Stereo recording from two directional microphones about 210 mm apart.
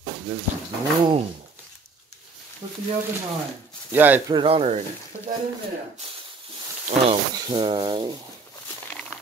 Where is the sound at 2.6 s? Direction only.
25° right (ahead or behind).